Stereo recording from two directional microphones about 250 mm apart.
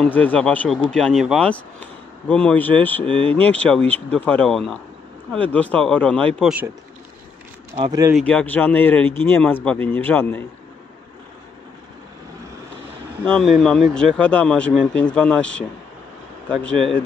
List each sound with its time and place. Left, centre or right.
0.0 s speech: centre
7.7 s speech: centre
8.1 s speech: centre
13.2 s speech: centre